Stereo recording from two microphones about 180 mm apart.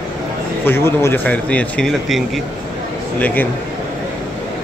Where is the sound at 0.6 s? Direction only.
15° left (ahead or behind).